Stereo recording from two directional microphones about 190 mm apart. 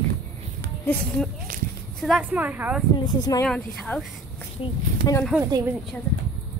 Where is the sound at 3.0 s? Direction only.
20° left (ahead or behind).